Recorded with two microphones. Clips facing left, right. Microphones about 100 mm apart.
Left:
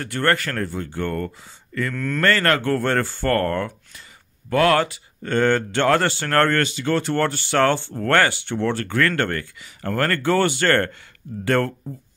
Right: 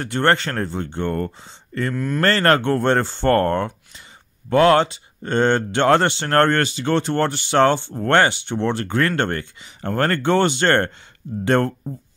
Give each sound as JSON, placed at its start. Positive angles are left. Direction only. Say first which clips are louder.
{"t": 0.0, "sound": "speech", "louder": "right 3 dB", "side_deg": -25}
{"t": 2.0, "sound": "speech", "louder": "right 3 dB", "side_deg": -15}
{"t": 2.2, "sound": "speech", "louder": "right 2 dB", "side_deg": -30}